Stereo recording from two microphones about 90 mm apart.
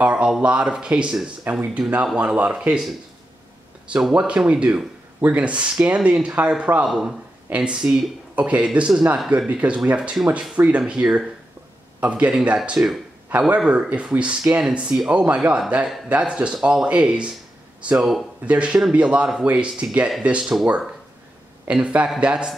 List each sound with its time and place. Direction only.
0.0 s speech: 10° right (ahead or behind)
4.1 s speech: 10° right (ahead or behind)
6.9 s a man's voice: 5° right (ahead or behind)
7.4 s speech: 15° right (ahead or behind)
13.3 s speech: 15° right (ahead or behind)